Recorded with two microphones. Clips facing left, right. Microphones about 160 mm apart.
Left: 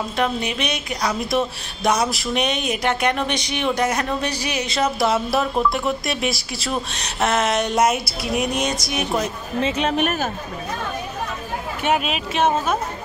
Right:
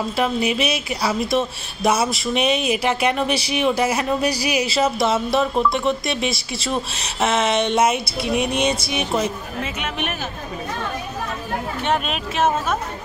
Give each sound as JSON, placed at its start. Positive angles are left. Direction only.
{"t": 0.2, "sound": "speech", "side_deg": -5}
{"t": 9.6, "sound": "speech", "side_deg": 30}
{"t": 11.8, "sound": "speech", "side_deg": 5}